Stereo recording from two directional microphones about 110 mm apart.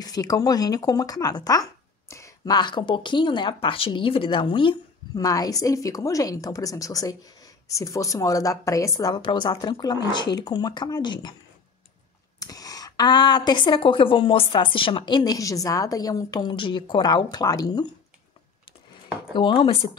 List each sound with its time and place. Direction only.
0.0 s speech: 35° left (ahead or behind)
12.4 s a woman's voice: 35° left (ahead or behind)
15.3 s speech: 30° left (ahead or behind)
19.3 s speech: 45° left (ahead or behind)